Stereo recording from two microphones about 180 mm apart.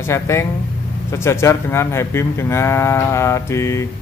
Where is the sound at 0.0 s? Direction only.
15° left (ahead or behind).